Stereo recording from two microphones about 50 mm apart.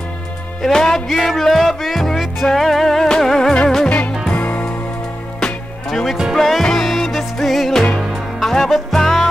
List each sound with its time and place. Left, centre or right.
0.6 s music: centre
4.3 s music: left
5.9 s music: centre